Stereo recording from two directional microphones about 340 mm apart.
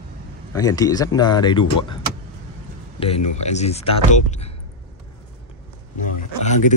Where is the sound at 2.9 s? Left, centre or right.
Centre.